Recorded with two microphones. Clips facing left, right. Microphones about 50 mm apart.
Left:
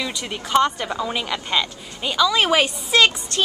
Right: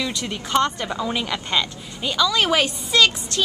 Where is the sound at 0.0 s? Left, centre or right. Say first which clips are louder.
Right 1 dB; centre.